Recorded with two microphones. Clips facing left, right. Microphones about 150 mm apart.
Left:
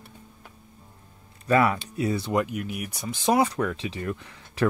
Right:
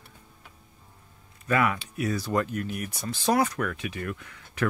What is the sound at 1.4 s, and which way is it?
Speech, 35° left (ahead or behind).